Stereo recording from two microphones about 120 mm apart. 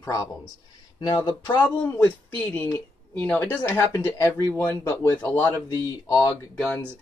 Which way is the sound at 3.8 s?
25° left (ahead or behind).